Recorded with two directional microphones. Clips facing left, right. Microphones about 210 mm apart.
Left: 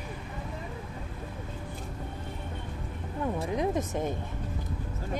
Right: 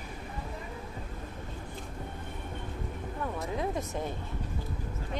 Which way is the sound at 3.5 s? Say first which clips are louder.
Left 4 dB; 20° left (ahead or behind).